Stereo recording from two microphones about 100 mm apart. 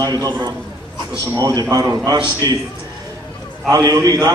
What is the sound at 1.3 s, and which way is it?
Speech, 35° right (ahead or behind).